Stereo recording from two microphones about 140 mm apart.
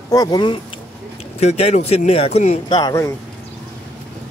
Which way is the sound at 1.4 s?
50° left (ahead or behind).